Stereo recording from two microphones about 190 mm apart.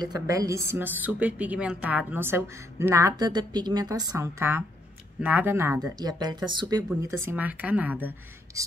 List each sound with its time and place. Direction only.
0.0 s a woman's voice: 20° right (ahead or behind)
7.0 s a woman's voice: 15° right (ahead or behind)